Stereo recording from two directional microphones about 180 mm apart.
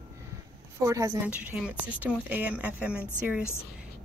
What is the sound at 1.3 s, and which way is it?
A woman's voice, 5° right (ahead or behind).